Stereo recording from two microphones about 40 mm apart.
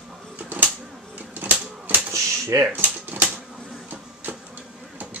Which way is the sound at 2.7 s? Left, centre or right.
Right.